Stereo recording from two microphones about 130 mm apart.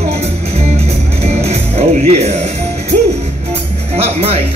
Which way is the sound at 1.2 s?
55° right (ahead or behind).